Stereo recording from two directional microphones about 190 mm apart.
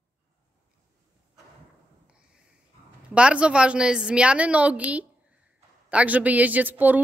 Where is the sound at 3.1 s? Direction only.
5° right (ahead or behind).